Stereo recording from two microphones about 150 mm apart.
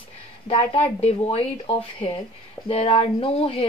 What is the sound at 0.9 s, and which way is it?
Speech, 45° left (ahead or behind).